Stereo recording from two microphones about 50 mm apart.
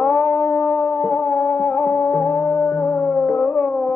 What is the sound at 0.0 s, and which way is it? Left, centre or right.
Music, left.